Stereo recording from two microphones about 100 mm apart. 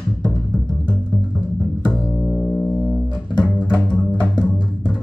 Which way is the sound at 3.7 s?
20° left (ahead or behind).